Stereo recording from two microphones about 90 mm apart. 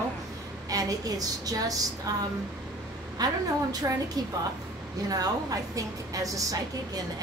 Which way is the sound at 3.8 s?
35° right (ahead or behind).